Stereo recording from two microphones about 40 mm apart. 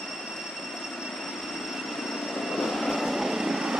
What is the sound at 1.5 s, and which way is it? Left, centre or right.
Vehicle, centre.